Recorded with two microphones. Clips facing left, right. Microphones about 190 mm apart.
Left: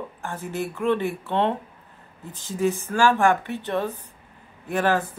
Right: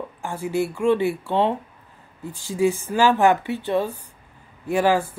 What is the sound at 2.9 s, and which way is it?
Speech, 15° right (ahead or behind).